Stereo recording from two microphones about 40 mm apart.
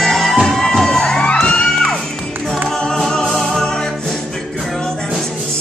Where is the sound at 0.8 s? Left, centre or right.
Centre.